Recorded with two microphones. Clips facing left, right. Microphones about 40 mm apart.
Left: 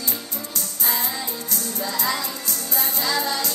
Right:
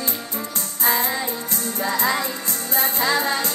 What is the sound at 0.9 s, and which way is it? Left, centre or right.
Music, right.